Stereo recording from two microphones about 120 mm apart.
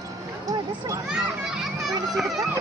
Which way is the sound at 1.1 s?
5° right (ahead or behind).